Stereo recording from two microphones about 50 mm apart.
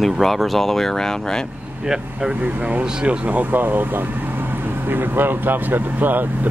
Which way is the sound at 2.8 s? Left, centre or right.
Right.